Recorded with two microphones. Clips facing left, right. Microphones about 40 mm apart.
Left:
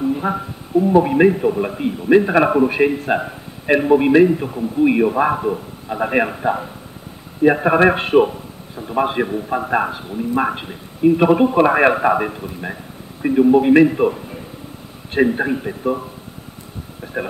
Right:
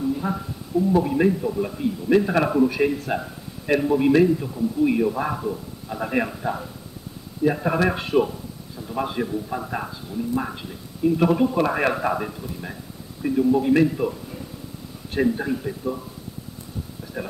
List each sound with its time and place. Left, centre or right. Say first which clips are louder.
0.0 s a man's voice: left 5 dB; left
17.0 s a man's voice: left 8 dB; left